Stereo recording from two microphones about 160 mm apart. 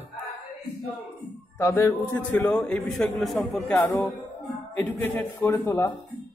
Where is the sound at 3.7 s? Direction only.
15° left (ahead or behind).